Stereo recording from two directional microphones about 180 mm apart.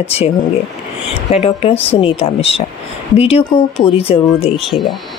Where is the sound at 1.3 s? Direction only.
35° left (ahead or behind).